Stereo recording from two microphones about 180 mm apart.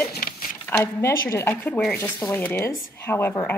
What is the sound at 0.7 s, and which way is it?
A woman's voice, 15° left (ahead or behind).